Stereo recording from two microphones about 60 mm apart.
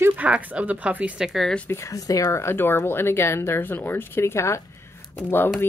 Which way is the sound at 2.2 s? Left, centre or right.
Left.